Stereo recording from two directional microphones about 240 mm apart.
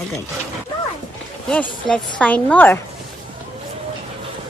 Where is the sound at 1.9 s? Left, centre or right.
Centre.